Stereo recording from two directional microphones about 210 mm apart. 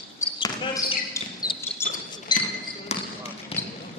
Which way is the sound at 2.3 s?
20° left (ahead or behind).